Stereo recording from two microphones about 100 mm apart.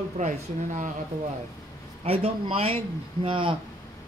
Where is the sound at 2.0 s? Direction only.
75° right (ahead or behind).